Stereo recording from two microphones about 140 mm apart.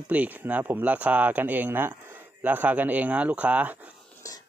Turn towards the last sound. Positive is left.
turn(degrees=25)  # may be behind; listen again after turning